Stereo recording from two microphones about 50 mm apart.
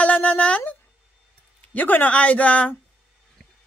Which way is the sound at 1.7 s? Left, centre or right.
Left.